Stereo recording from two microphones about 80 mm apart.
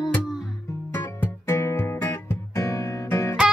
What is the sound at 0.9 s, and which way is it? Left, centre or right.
Music, left.